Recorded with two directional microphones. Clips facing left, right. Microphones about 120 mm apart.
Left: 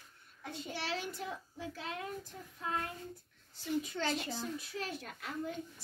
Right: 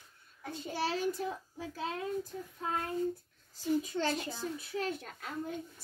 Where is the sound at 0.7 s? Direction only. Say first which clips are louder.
Right 8 dB; 40° right (ahead or behind).